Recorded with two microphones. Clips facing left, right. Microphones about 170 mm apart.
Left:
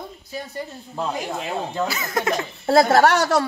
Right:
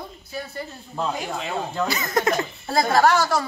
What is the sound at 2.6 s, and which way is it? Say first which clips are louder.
Speech: left 4 dB; 70° left (ahead or behind).